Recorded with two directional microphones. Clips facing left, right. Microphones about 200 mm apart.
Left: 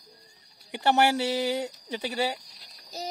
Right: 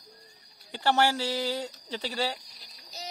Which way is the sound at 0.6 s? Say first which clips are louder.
Left 2 dB; 20° left (ahead or behind).